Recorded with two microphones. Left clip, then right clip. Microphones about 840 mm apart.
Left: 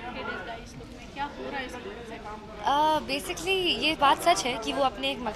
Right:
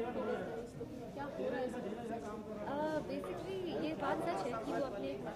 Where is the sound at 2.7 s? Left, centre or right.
Left.